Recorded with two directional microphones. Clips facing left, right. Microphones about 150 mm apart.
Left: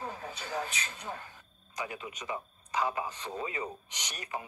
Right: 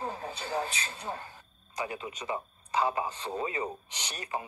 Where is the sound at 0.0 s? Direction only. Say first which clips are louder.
Right 3 dB; 30° right (ahead or behind).